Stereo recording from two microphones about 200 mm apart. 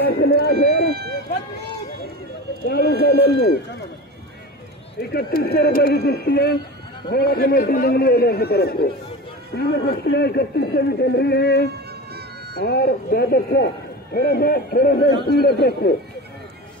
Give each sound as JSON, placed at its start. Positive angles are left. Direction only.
{"t": 0.0, "sound": "a sound", "side_deg": 55}
{"t": 0.8, "sound": "run", "side_deg": -50}
{"t": 2.6, "sound": "speech", "side_deg": 50}
{"t": 5.1, "sound": "a man's voice", "side_deg": 50}